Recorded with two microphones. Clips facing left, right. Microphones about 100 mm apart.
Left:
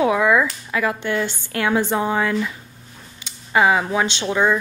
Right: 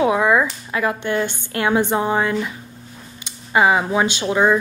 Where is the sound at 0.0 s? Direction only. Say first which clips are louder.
Right 1 dB; 25° right (ahead or behind).